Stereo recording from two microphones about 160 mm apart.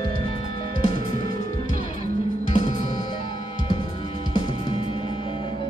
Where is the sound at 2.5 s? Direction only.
50° left (ahead or behind).